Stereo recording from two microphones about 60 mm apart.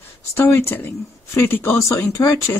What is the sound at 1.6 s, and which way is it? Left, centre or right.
Speech, left.